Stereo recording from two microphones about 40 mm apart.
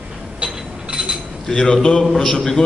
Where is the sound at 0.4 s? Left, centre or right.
Right.